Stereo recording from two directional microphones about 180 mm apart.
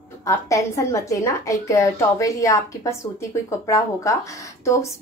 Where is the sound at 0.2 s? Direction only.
15° left (ahead or behind).